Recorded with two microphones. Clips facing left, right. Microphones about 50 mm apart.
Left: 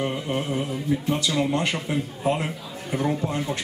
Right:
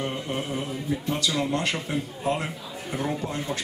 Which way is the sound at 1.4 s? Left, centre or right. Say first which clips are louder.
Left 2 dB; centre.